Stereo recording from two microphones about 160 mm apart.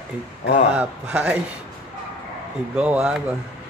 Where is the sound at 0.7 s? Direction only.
10° right (ahead or behind).